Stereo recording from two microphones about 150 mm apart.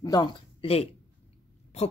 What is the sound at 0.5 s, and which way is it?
Speech, 40° left (ahead or behind).